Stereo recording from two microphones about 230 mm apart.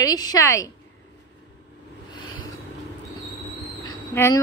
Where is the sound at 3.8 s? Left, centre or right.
Centre.